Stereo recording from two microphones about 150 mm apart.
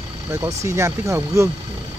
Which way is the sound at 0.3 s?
20° right (ahead or behind).